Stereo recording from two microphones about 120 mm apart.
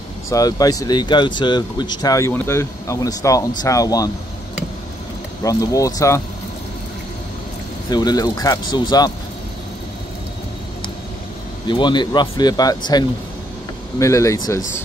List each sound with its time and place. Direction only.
0.3 s speech: 30° left (ahead or behind)
5.4 s speech: 30° left (ahead or behind)
7.9 s speech: 35° left (ahead or behind)
11.6 s speech: 40° left (ahead or behind)